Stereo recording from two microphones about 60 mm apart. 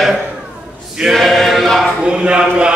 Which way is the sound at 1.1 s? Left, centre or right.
Centre.